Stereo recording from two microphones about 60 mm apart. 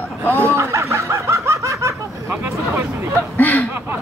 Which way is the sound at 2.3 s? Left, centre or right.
Right.